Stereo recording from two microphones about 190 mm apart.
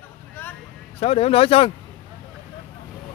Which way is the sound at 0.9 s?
30° left (ahead or behind).